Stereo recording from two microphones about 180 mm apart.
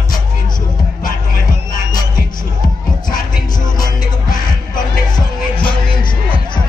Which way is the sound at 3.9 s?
50° left (ahead or behind).